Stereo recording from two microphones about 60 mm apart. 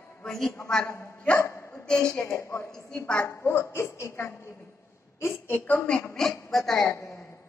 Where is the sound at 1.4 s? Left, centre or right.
Left.